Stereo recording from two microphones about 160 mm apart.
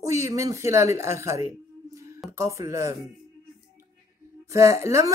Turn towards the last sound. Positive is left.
turn(degrees=-20)  # may be behind; listen again after turning